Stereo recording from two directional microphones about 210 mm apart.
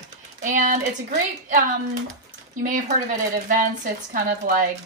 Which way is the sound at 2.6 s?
40° right (ahead or behind).